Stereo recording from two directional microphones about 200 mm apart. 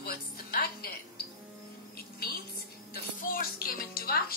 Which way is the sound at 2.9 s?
50° left (ahead or behind).